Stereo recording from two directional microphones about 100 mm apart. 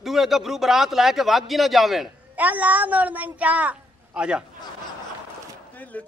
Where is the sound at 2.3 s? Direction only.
15° right (ahead or behind).